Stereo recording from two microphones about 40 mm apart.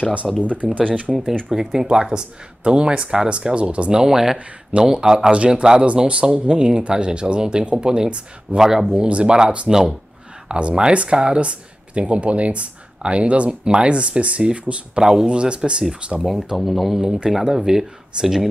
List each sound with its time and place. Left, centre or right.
0.2 s speech: centre
0.6 s speech: centre
1.1 s speech: right
1.5 s speech: centre; by 4.0 s right
4.0 s speech: centre
8.5 s speech: centre
8.9 s speech: right
9.7 s speech: centre
16.5 s speech: centre
17.0 s speech: centre